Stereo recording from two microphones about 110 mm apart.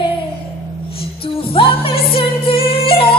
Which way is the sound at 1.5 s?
55° left (ahead or behind).